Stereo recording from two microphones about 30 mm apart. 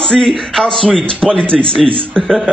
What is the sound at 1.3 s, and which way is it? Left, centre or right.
Speech, left.